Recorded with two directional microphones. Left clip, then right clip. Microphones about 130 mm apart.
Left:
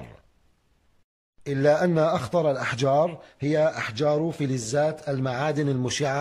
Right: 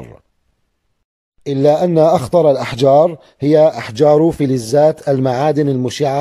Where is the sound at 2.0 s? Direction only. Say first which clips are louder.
Right 12 dB; 45° right (ahead or behind).